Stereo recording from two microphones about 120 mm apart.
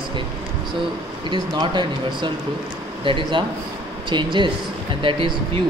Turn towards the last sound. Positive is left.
turn(degrees=-45)  # may be behind; listen again after turning